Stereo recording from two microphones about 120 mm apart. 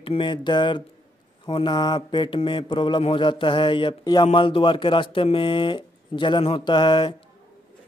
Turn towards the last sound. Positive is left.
turn(degrees=40)  # may be behind; listen again after turning